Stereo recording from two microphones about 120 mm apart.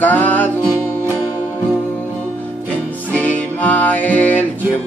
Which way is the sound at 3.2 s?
10° left (ahead or behind).